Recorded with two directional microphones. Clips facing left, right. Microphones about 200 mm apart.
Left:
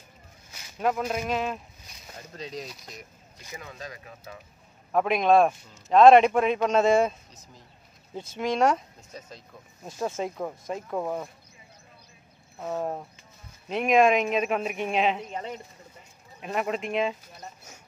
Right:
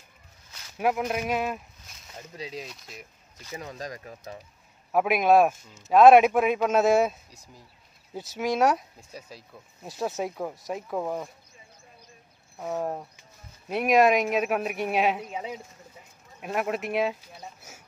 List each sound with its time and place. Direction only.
0.7 s a man's voice: 10° right (ahead or behind)
3.5 s speech: 40° right (ahead or behind)
4.9 s a man's voice: 10° right (ahead or behind)
12.5 s speech: 10° right (ahead or behind)